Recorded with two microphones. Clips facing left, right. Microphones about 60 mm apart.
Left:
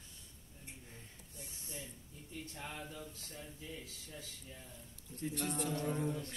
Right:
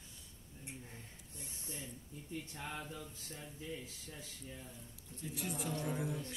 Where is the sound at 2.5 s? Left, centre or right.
Centre.